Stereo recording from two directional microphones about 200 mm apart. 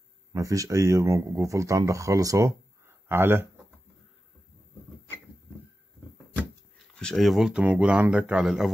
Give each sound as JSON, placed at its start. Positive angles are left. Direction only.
{"t": 0.3, "sound": "speech", "side_deg": -15}
{"t": 7.0, "sound": "speech", "side_deg": 0}